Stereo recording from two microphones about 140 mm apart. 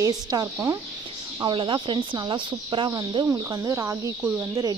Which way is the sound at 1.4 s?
35° right (ahead or behind).